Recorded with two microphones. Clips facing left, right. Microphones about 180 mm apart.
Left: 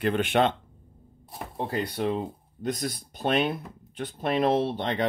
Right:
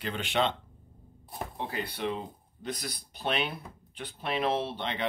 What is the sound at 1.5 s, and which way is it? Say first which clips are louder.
Speech: left 8 dB; 40° left (ahead or behind).